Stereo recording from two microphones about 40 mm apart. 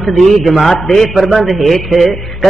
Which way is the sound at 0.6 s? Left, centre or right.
Centre.